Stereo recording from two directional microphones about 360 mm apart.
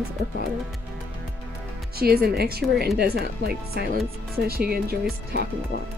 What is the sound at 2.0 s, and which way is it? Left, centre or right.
Speech, right.